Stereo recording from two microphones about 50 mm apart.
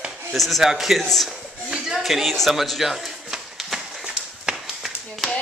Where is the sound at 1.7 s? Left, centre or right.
Centre.